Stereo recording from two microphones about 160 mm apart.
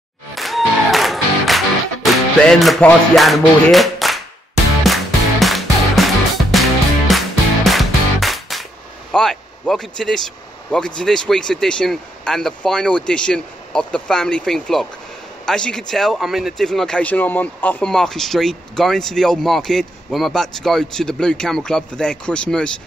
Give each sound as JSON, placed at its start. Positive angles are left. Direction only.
{"t": 0.3, "sound": "music", "side_deg": 0}
{"t": 9.1, "sound": "speech", "side_deg": 5}